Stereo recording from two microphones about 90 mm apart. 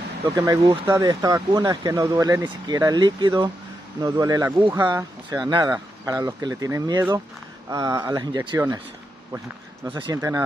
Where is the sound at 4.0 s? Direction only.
40° right (ahead or behind).